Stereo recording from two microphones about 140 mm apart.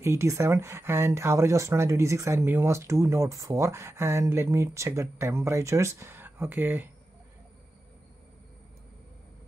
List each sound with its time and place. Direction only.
0.0 s speech: 20° right (ahead or behind)